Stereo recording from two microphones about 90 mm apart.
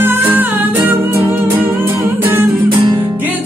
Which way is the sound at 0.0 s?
25° right (ahead or behind).